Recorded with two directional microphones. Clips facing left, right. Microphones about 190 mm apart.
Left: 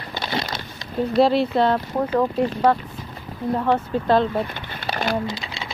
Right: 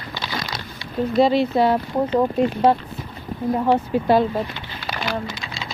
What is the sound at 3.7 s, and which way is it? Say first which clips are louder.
Speech: right 2 dB; 15° right (ahead or behind).